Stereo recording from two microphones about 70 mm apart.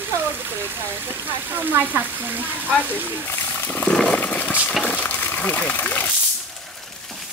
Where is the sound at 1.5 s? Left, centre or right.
Right.